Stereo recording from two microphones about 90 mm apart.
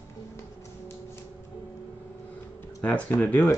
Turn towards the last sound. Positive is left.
turn(degrees=15)  # may be behind; listen again after turning